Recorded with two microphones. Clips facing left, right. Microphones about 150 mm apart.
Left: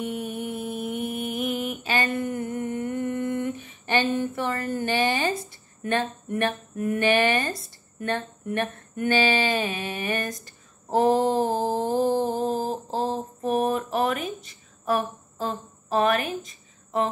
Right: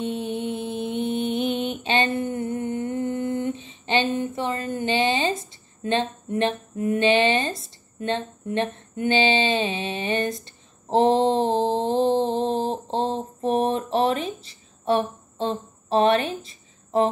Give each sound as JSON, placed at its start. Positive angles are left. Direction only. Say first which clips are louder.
{"t": 0.0, "sound": "mantra", "louder": "right 3 dB", "side_deg": -25}
{"t": 8.0, "sound": "speech", "louder": "right 2 dB", "side_deg": -20}
{"t": 12.8, "sound": "a sound", "louder": "right 2 dB", "side_deg": -30}
{"t": 13.4, "sound": "speech", "louder": "right 2 dB", "side_deg": -30}